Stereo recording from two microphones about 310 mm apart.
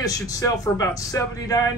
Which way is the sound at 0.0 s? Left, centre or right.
Centre.